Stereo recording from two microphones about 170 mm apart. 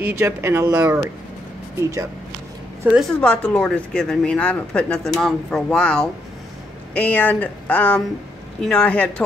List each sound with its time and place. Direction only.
0.0 s speech: 15° right (ahead or behind)
2.8 s a woman's voice: 5° right (ahead or behind)
3.1 s speech: 5° left (ahead or behind)